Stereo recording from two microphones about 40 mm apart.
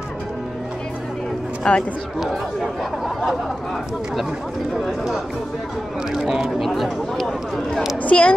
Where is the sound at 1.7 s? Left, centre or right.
Left.